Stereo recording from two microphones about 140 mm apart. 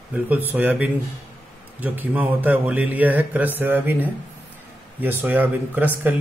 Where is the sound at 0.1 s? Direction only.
10° right (ahead or behind).